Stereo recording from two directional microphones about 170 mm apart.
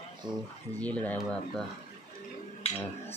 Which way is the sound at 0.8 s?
10° left (ahead or behind).